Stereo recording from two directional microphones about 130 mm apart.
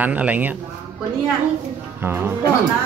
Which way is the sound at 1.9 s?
15° right (ahead or behind).